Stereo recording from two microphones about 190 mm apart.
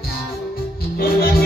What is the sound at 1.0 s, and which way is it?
Music, 50° left (ahead or behind).